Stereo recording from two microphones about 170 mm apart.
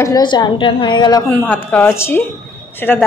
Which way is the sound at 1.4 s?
10° left (ahead or behind).